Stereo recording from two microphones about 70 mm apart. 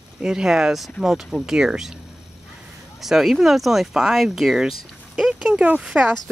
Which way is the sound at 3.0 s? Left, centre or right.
Centre.